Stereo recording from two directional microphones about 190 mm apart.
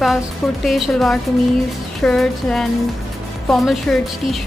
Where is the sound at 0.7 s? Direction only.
Centre (ahead or behind).